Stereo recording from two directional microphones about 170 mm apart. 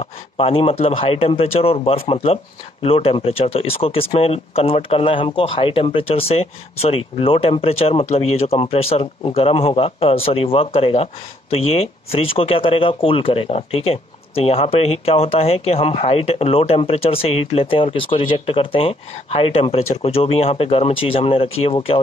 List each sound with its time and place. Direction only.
0.0 s speech: 35° left (ahead or behind)